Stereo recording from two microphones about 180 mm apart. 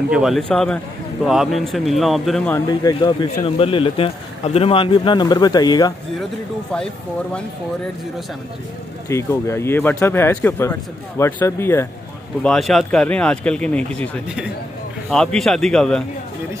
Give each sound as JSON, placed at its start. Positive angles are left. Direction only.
{"t": 0.1, "sound": "speech", "side_deg": 0}
{"t": 2.5, "sound": "speech", "side_deg": 20}
{"t": 9.1, "sound": "speech", "side_deg": 15}
{"t": 12.4, "sound": "speech", "side_deg": 0}